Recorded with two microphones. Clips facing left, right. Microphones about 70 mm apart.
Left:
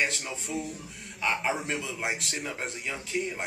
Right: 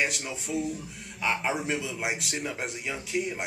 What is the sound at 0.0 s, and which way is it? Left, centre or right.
A man's voice, centre.